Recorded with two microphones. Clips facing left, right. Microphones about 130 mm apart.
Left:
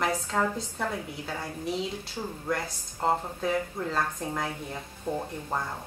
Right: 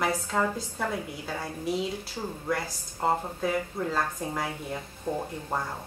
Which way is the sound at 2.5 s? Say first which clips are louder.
Even; 5° right (ahead or behind).